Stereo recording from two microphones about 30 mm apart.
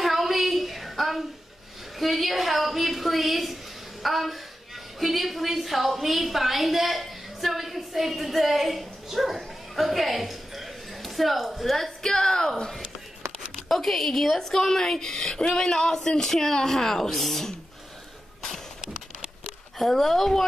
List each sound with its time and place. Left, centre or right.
0.0 s a sound: centre
2.0 s a woman's voice: centre
12.0 s a woman's voice: centre
13.7 s speech: centre
19.8 s speech: centre